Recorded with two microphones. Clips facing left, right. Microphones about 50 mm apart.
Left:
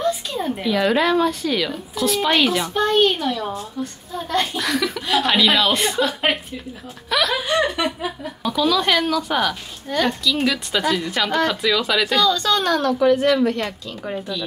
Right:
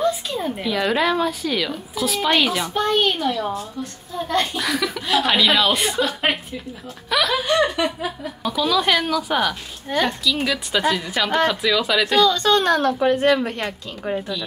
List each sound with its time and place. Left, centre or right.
0.0 s speech: centre
12.3 s a woman's voice: right